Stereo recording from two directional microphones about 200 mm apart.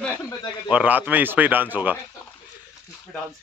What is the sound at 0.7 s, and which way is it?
Mantra, 5° right (ahead or behind).